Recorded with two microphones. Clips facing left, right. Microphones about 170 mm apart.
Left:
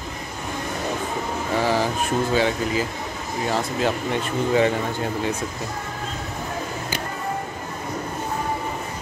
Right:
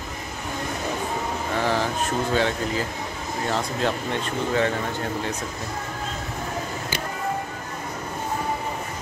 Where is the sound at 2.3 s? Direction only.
5° left (ahead or behind).